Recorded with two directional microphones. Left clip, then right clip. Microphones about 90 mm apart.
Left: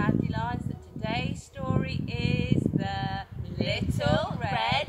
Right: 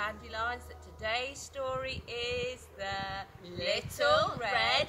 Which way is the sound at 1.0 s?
35° right (ahead or behind).